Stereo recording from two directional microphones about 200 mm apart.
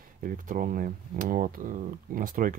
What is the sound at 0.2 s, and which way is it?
Speech, 45° right (ahead or behind).